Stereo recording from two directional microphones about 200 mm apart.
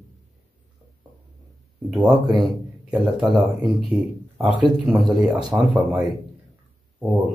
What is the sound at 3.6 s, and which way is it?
Speech, 5° right (ahead or behind).